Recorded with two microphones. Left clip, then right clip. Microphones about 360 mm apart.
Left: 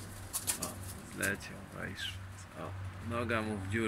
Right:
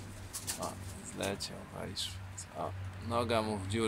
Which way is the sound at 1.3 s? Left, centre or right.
Right.